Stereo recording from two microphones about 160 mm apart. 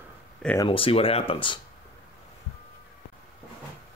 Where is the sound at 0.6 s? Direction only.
35° left (ahead or behind).